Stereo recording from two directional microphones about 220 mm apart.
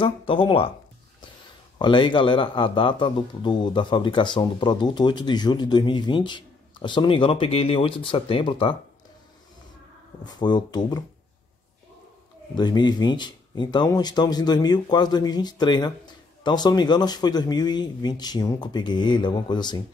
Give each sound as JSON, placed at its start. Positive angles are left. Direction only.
{"t": 0.0, "sound": "a man's voice", "side_deg": 25}
{"t": 1.8, "sound": "a man's voice", "side_deg": 20}
{"t": 10.2, "sound": "a man's voice", "side_deg": 20}
{"t": 12.5, "sound": "a man's voice", "side_deg": 20}